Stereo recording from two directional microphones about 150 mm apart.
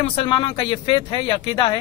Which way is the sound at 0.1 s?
35° left (ahead or behind).